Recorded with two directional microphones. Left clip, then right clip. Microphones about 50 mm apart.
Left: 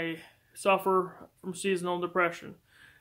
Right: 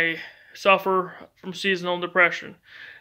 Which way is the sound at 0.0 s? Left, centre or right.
Left.